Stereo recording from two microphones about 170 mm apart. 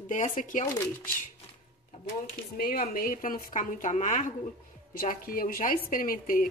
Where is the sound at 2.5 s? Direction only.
60° left (ahead or behind); by 4.3 s 45° left (ahead or behind).